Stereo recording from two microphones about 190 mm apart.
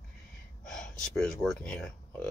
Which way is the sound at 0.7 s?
Centre (ahead or behind).